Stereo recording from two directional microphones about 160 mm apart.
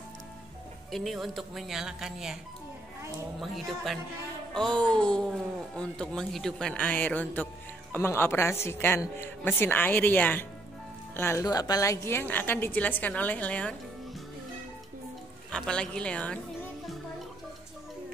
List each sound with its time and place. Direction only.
0.9 s speech: centre (ahead or behind)
3.3 s a woman's voice: centre (ahead or behind)
15.5 s a woman's voice: 5° left (ahead or behind)